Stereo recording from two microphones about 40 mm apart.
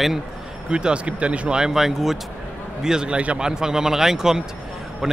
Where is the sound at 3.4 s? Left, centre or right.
Centre.